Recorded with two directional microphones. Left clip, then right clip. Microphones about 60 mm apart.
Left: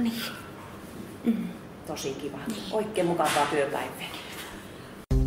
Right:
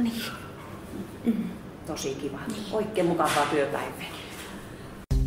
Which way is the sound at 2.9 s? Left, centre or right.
Centre.